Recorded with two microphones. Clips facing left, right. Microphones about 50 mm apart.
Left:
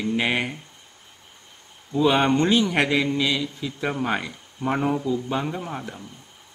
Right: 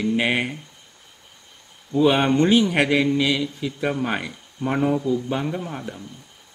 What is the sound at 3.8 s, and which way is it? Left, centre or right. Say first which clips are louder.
Speech: right 1 dB; centre.